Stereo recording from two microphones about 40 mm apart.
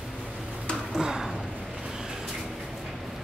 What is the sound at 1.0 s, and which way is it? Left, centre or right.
Speech, centre.